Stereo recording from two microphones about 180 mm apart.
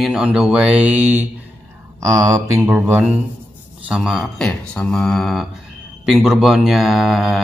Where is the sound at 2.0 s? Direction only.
15° right (ahead or behind).